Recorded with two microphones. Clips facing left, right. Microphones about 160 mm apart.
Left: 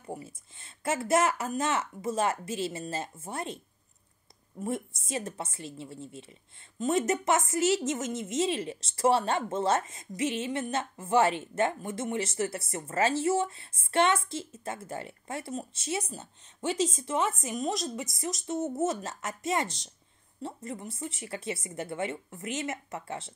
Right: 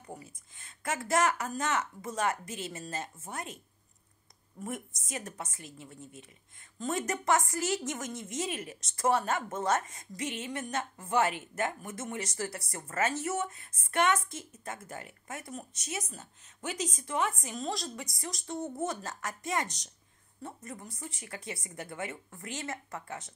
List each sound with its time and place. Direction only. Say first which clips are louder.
0.0 s a woman's voice: left 6 dB; 25° left (ahead or behind)
4.6 s a woman's voice: left 6 dB; 30° left (ahead or behind)